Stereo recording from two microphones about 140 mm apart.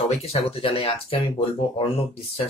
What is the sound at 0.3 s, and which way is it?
Speech, 40° left (ahead or behind).